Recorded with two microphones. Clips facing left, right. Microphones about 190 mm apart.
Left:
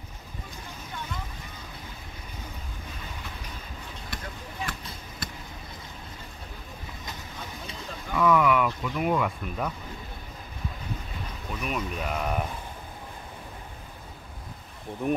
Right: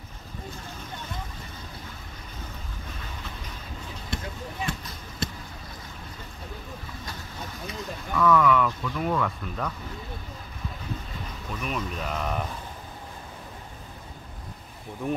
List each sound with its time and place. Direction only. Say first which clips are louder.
4.1 s a sound: right 6 dB; 25° right (ahead or behind)
4.7 s basketball bounce: right 5 dB; 25° right (ahead or behind)
5.2 s a sound: right 7 dB; 25° right (ahead or behind)
8.1 s speech: right 1 dB; 15° left (ahead or behind)
11.5 s speech: even; 5° left (ahead or behind)
15.0 s speech: left 2 dB; 15° left (ahead or behind)